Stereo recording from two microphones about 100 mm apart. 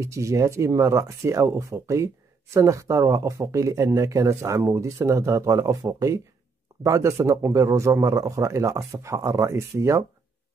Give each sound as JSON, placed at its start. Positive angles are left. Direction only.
{"t": 0.0, "sound": "speech", "side_deg": -30}